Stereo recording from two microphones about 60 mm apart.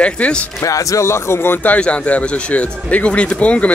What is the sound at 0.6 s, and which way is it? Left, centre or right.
Speech, left.